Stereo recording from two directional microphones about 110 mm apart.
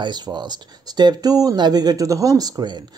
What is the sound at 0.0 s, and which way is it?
Speech, 40° right (ahead or behind).